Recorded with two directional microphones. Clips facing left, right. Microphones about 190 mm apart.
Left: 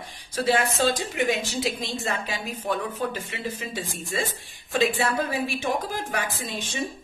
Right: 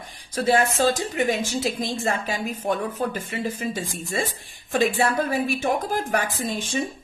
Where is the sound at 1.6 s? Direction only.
45° right (ahead or behind).